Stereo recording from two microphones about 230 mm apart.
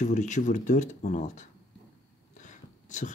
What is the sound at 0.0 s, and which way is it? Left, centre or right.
Speech, left.